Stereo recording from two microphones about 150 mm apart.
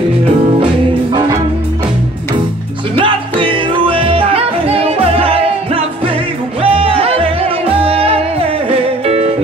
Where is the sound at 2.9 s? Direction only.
35° right (ahead or behind).